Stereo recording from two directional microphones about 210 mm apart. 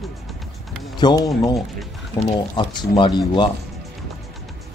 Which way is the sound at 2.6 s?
20° left (ahead or behind).